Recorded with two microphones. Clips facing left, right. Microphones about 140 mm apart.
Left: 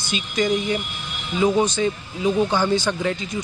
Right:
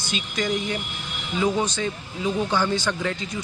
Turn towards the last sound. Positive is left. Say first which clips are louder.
# left 4 dB
turn(degrees=15)  # may be behind; listen again after turning